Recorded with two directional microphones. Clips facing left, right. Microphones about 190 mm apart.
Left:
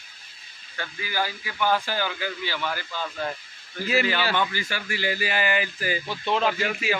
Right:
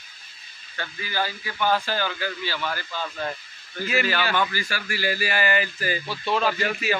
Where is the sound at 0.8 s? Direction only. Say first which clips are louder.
Even; 15° left (ahead or behind).